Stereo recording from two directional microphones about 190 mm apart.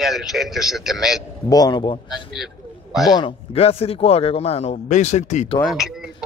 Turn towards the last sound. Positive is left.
turn(degrees=0)  # may be behind; listen again after turning